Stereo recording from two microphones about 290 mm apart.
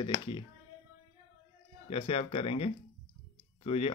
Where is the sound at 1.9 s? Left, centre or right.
Centre.